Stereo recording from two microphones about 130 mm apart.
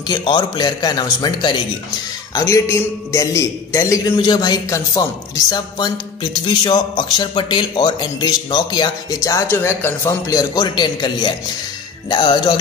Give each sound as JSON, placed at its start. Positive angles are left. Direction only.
{"t": 0.0, "sound": "a man's voice", "side_deg": 35}
{"t": 9.5, "sound": "a man's voice", "side_deg": 20}